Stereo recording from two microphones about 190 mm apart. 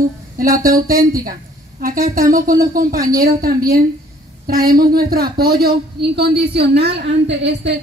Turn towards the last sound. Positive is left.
turn(degrees=-65)  # may be behind; listen again after turning